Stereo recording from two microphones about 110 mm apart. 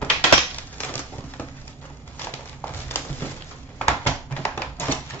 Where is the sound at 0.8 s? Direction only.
15° left (ahead or behind).